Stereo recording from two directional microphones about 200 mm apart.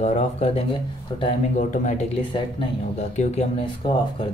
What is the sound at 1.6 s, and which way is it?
Speech, 40° left (ahead or behind).